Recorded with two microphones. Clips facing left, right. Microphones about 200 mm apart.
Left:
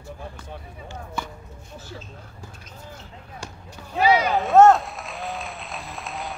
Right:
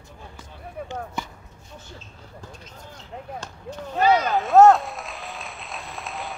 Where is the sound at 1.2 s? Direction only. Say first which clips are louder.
Left 5 dB; 20° right (ahead or behind).